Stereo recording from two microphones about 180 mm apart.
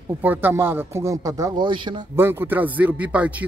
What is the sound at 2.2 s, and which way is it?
Speech, 10° right (ahead or behind).